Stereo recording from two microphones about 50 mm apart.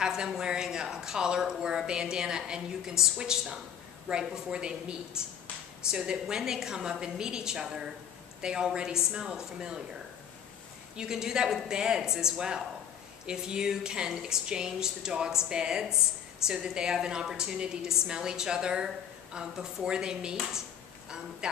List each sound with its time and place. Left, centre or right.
0.0 s speech: centre
11.0 s speech: centre